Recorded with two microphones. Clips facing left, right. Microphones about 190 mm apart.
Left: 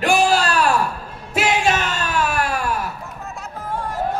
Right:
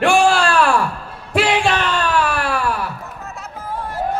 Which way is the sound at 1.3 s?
45° left (ahead or behind).